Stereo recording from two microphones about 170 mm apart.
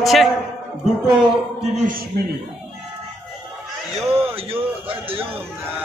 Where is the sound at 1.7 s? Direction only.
50° right (ahead or behind).